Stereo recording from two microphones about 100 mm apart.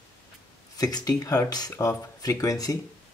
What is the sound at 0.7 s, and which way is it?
Speech, 40° left (ahead or behind).